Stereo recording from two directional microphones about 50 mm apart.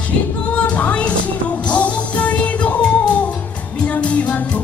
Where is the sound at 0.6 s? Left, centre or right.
Left.